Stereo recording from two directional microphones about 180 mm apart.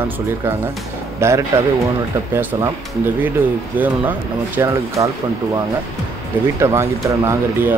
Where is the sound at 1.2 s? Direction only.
15° right (ahead or behind).